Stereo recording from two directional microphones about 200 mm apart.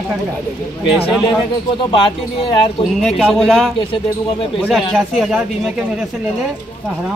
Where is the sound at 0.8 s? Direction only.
5° right (ahead or behind).